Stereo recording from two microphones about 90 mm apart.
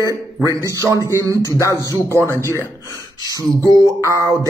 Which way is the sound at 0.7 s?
35° right (ahead or behind).